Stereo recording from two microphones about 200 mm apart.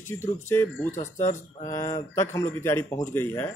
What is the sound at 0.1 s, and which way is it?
Speech, 10° left (ahead or behind).